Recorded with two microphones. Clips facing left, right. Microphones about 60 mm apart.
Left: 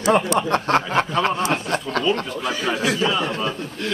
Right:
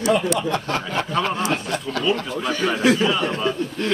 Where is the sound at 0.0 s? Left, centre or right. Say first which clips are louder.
Left 1 dB; left.